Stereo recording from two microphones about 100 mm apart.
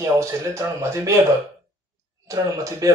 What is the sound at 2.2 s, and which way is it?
Speech, 35° right (ahead or behind).